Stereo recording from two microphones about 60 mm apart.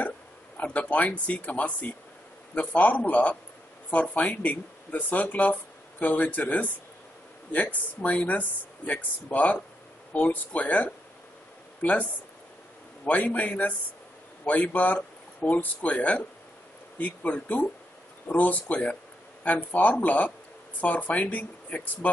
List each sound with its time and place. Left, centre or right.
0.7 s speech: left
8.0 s speech: left